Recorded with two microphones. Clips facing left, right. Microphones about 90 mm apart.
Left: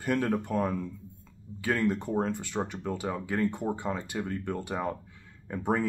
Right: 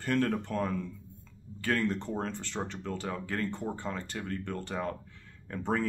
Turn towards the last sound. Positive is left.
turn(degrees=15)  # may be behind; listen again after turning